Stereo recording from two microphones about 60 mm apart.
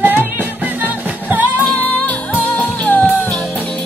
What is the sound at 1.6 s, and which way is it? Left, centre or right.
Music, left.